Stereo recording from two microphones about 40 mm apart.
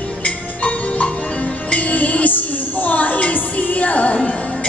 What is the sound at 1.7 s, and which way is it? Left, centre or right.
Music, left.